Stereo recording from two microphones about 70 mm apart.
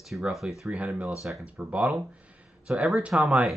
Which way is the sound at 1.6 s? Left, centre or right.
Centre.